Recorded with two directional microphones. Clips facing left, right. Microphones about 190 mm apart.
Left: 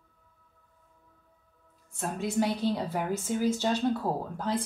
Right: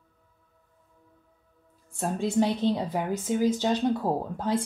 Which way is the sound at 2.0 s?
25° right (ahead or behind).